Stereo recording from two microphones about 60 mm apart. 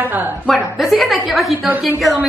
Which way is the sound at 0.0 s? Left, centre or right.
Right.